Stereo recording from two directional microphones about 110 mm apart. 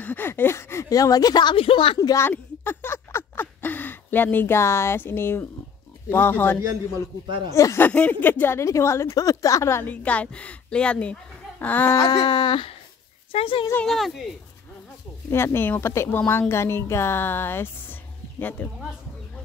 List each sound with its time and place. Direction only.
0.0 s speech: 20° left (ahead or behind); by 2.0 s 55° left (ahead or behind)
2.0 s a sound: 25° left (ahead or behind)
6.0 s a woman's voice: 20° left (ahead or behind)
7.9 s a woman's voice: 15° left (ahead or behind)
10.0 s speech: 10° left (ahead or behind)
11.9 s speech: 30° left (ahead or behind)
13.3 s speech: 55° left (ahead or behind)
13.8 s speech: centre (ahead or behind)
15.3 s a woman's voice: 20° left (ahead or behind)